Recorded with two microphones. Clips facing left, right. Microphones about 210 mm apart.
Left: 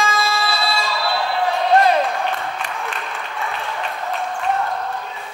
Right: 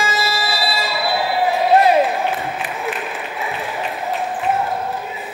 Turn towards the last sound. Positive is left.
turn(degrees=-15)  # may be behind; listen again after turning